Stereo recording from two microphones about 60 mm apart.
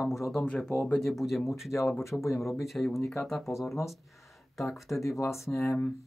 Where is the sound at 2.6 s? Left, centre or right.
Centre.